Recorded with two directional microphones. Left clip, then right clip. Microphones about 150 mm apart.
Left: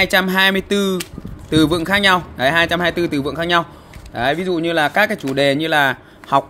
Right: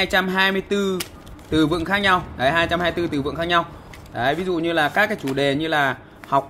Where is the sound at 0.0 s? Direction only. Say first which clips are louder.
Left 5 dB; 70° left (ahead or behind).